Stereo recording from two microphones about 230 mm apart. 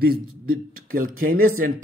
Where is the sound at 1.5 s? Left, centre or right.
Right.